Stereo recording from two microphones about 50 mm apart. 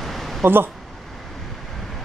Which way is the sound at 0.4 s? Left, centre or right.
Right.